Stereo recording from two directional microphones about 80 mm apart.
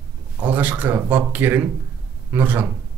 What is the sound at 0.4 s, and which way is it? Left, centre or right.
Speech, right.